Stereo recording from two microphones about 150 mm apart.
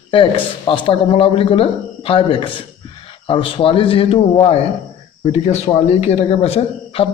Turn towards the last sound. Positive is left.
turn(degrees=40)  # may be behind; listen again after turning